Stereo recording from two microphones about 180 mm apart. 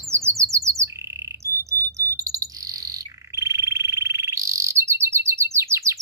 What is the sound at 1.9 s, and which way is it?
Bird, 20° right (ahead or behind).